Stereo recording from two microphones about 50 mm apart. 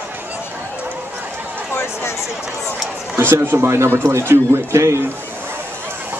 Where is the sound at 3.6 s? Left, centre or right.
Right.